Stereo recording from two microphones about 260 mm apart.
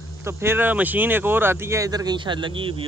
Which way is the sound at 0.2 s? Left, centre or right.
Centre.